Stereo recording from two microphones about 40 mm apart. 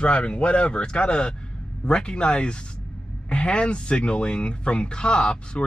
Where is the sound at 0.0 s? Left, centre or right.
Left.